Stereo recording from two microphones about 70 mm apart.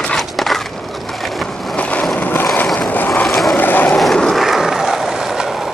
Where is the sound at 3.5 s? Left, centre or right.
Left.